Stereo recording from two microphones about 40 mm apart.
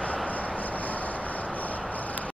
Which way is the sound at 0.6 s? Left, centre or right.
Left.